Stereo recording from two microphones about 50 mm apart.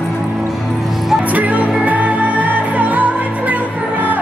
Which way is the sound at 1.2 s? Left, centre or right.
Right.